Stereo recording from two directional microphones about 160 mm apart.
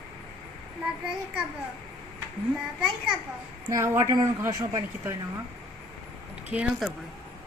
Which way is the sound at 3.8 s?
20° right (ahead or behind).